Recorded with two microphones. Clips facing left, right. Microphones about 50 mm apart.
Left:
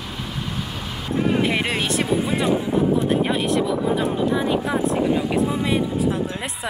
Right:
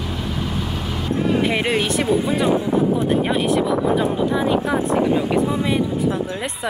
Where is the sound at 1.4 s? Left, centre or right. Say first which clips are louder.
Right 2 dB; centre.